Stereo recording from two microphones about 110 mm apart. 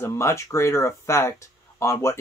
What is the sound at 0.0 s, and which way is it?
Speech, 25° left (ahead or behind).